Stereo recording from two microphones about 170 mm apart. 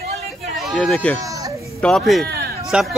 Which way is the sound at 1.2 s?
20° right (ahead or behind).